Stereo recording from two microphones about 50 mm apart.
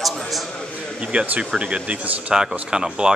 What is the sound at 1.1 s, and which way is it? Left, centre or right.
Speech, right.